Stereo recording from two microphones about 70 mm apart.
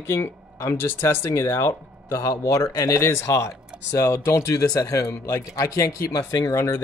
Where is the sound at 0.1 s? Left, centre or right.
Left.